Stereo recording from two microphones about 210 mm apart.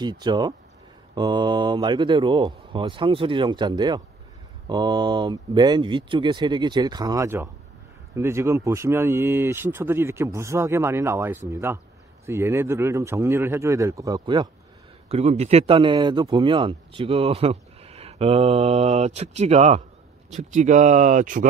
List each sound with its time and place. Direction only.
0.0 s speech: 20° right (ahead or behind); by 21.5 s 40° right (ahead or behind)